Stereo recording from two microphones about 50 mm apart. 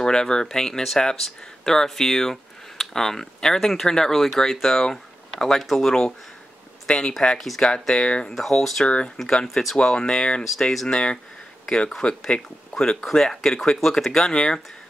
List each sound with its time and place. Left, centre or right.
0.0 s speech: centre
7.3 s speech: centre
7.6 s speech: centre
8.3 s speech: centre
8.8 s speech: centre
9.5 s speech: centre
9.8 s speech: centre
10.6 s speech: centre
10.9 s speech: centre